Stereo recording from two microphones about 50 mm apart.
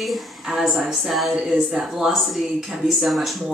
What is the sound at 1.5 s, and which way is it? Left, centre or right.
Speech, right.